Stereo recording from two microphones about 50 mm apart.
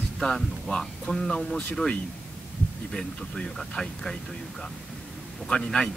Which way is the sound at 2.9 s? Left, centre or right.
Centre.